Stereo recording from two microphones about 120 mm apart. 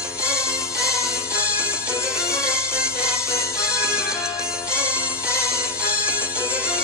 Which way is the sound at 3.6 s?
20° left (ahead or behind).